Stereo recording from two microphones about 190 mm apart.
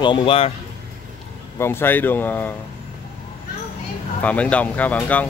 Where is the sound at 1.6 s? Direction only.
10° left (ahead or behind).